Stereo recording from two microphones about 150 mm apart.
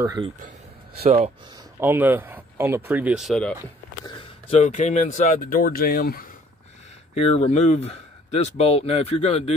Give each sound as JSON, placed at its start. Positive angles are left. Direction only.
{"t": 1.0, "sound": "speech", "side_deg": -40}
{"t": 1.8, "sound": "speech", "side_deg": -10}
{"t": 4.0, "sound": "a sound", "side_deg": 35}
{"t": 4.6, "sound": "speech", "side_deg": 50}
{"t": 7.2, "sound": "speech", "side_deg": 40}